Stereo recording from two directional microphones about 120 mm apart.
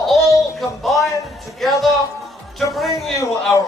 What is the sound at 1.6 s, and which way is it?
Speech, centre (ahead or behind).